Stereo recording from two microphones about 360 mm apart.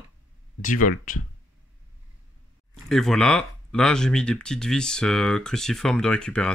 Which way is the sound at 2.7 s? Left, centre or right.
Centre.